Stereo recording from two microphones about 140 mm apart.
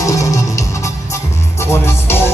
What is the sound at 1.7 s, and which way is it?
Music, 15° left (ahead or behind).